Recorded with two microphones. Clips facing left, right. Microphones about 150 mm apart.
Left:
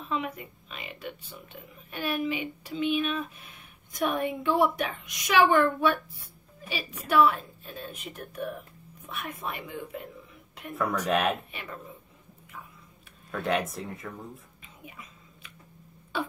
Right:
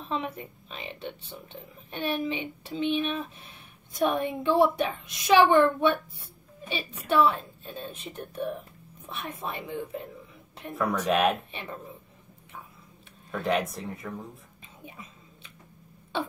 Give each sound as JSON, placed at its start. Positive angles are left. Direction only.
{"t": 0.0, "sound": "a woman's voice", "side_deg": -30}
{"t": 10.7, "sound": "speech", "side_deg": 0}
{"t": 13.3, "sound": "speech", "side_deg": 0}
{"t": 14.9, "sound": "chewing", "side_deg": -30}